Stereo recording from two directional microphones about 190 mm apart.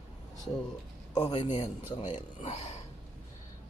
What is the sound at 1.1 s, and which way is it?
Speech, 20° left (ahead or behind).